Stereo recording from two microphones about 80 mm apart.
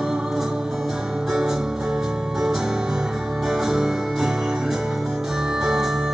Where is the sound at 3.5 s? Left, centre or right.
Centre.